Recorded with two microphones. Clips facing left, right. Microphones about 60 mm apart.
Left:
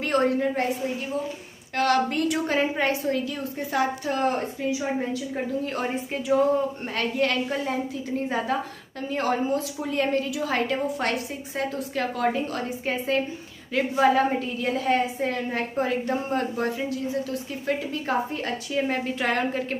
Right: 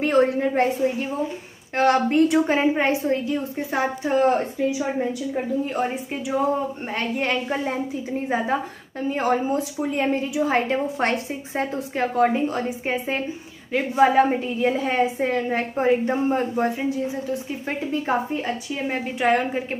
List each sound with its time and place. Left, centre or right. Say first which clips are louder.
0.0 s a woman's voice: right 4 dB; right
1.8 s a woman's voice: right 5 dB; right; by 6.3 s centre
7.2 s a woman's voice: even; right
9.1 s a woman's voice: right 2 dB; centre
18.4 s a woman's voice: even; centre